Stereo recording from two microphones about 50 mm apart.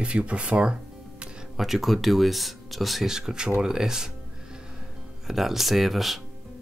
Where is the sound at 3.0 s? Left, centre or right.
Centre.